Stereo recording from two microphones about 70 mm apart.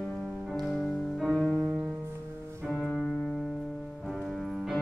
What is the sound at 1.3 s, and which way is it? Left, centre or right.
Music, centre.